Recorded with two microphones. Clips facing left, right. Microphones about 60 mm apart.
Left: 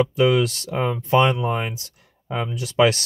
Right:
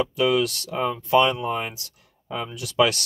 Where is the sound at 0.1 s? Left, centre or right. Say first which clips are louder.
Left 3 dB; left.